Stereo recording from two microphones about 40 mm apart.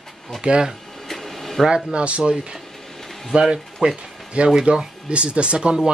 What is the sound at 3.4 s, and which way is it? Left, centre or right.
Speech, centre.